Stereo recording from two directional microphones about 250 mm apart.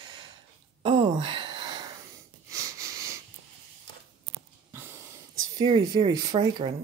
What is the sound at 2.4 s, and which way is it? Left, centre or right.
Wheeze, centre.